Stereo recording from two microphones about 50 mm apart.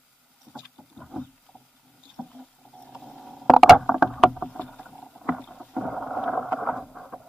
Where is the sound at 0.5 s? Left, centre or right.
Left.